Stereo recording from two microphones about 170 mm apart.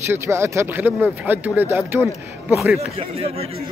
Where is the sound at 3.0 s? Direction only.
35° right (ahead or behind).